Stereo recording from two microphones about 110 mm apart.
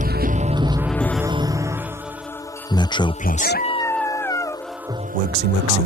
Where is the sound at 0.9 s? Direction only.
10° left (ahead or behind).